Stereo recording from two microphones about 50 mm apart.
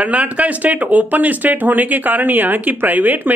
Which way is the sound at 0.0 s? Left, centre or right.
Right.